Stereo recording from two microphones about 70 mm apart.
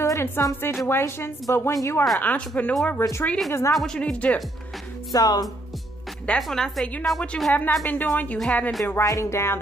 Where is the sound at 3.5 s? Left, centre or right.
Left.